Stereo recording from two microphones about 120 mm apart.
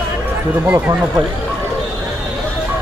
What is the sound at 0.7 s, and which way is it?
Speech, 15° right (ahead or behind).